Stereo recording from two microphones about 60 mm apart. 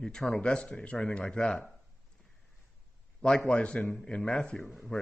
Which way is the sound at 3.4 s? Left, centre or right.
Left.